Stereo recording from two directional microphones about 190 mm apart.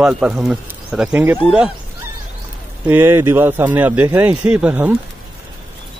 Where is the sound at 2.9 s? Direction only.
10° right (ahead or behind).